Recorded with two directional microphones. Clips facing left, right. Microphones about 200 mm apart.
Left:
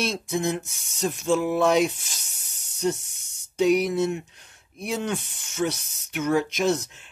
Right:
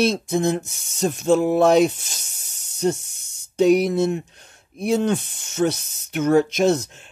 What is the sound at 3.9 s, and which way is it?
Speech, 30° right (ahead or behind).